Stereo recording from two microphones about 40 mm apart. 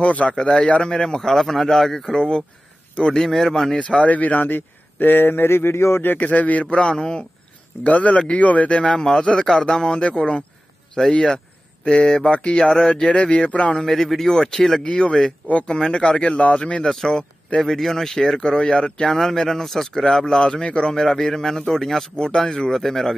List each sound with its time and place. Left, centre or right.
0.0 s a man's voice: left
0.4 s a man's voice: centre
3.7 s a man's voice: left
6.1 s a man's voice: left
7.8 s a man's voice: left
12.5 s speech: centre
13.7 s a man's voice: centre
14.9 s speech: left
16.9 s a man's voice: centre
19.0 s a man's voice: centre
22.1 s a man's voice: left